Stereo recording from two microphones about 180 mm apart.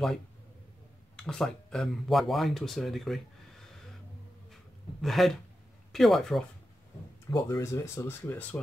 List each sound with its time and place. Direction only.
1.1 s speech: 5° left (ahead or behind)
5.0 s speech: centre (ahead or behind)
7.2 s speech: 20° left (ahead or behind)